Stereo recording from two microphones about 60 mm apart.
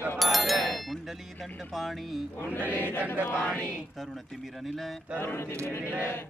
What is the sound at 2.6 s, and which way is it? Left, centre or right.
Chant, left.